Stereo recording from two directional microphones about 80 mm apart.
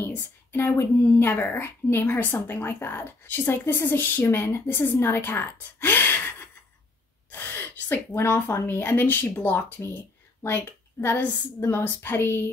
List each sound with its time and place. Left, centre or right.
0.0 s speech: left